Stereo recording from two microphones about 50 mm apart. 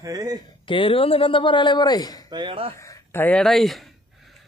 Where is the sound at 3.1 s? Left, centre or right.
Left.